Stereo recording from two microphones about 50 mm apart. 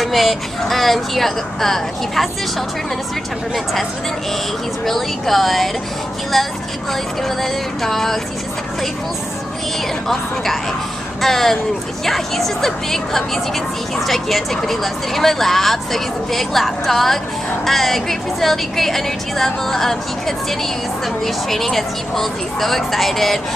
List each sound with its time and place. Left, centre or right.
0.0 s speech: centre
4.8 s speech: centre
7.8 s speech: centre
10.0 s speech: centre
21.5 s speech: centre